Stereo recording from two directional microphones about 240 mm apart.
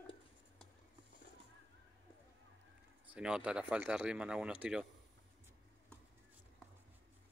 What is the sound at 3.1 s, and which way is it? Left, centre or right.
Speech, centre.